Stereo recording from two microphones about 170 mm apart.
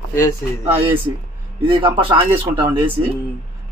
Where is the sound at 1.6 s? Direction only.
30° right (ahead or behind).